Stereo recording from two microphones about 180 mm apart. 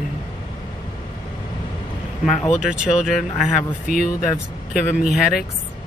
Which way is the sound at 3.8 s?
50° left (ahead or behind).